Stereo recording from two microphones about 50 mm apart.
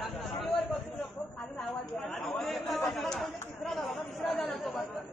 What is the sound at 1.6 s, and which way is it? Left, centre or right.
Chatter, centre.